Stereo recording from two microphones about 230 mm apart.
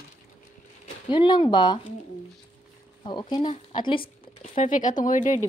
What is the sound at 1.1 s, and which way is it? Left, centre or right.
Speech, centre.